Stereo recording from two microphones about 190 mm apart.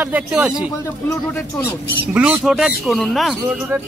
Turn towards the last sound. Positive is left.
turn(degrees=0)  # may be behind; listen again after turning